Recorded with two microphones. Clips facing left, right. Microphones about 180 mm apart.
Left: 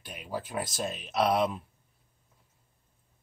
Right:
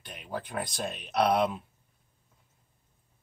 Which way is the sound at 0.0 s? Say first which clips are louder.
Left 1 dB; 5° left (ahead or behind).